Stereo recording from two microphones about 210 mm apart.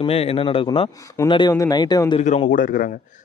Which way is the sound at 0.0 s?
25° left (ahead or behind).